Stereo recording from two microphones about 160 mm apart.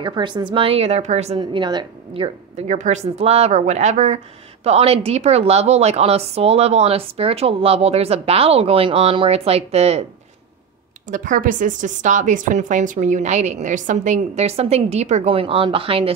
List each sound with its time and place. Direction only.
0.0 s a woman's voice: 30° right (ahead or behind)
1.4 s speech: 25° right (ahead or behind)
2.7 s a woman's voice: 45° right (ahead or behind)
11.1 s a woman's voice: 55° right (ahead or behind); by 16.1 s 35° right (ahead or behind)